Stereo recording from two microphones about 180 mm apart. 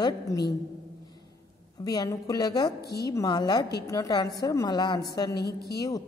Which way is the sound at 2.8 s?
60° left (ahead or behind).